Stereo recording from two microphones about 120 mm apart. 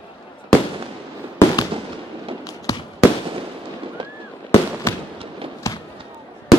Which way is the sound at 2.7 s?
30° left (ahead or behind).